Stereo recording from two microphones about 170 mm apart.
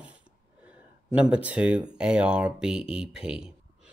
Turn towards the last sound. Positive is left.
turn(degrees=-5)  # may be behind; listen again after turning